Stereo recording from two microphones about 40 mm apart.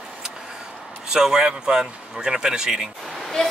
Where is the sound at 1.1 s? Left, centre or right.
Centre.